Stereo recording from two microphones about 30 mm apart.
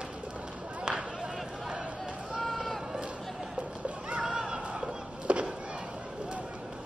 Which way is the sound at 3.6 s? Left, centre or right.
Right.